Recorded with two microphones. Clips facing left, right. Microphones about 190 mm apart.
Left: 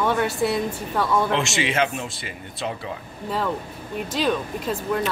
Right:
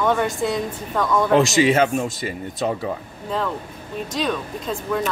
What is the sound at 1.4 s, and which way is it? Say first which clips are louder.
Speech: right 7 dB; 40° right (ahead or behind).